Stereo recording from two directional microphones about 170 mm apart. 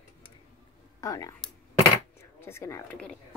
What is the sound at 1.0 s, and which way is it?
Speech, 20° left (ahead or behind).